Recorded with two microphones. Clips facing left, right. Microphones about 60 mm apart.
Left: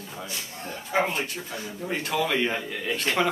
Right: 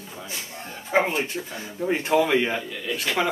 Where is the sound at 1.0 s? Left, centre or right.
Centre.